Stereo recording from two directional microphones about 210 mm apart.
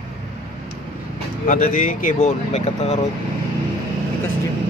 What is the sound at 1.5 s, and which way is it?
Speech, 40° left (ahead or behind).